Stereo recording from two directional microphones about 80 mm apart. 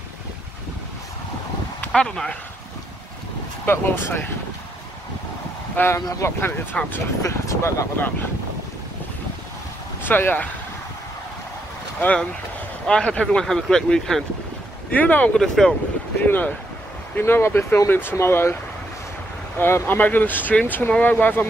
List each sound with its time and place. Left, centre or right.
1.9 s speech: centre
3.6 s speech: left
5.8 s speech: left
6.0 s speech: left
6.8 s speech: centre
7.2 s speech: left
10.0 s speech: left
12.0 s speech: centre
14.9 s speech: centre
15.3 s speech: centre
16.2 s speech: left
19.6 s speech: left